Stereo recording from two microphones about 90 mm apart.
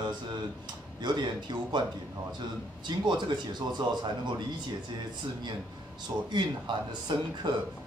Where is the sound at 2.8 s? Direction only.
55° right (ahead or behind).